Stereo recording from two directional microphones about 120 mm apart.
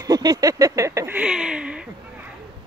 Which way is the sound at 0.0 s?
30° right (ahead or behind).